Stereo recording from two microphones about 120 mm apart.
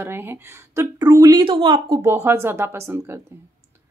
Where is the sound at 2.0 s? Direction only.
20° right (ahead or behind).